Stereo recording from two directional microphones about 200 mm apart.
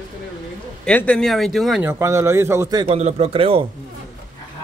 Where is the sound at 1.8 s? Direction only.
15° right (ahead or behind).